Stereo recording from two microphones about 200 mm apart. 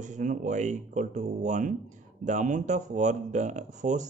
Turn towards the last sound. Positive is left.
turn(degrees=-35)  # may be behind; listen again after turning